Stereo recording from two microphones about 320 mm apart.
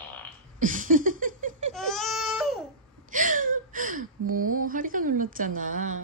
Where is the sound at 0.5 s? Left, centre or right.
Right.